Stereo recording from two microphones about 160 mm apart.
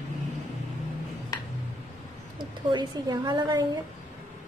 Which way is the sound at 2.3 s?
25° right (ahead or behind).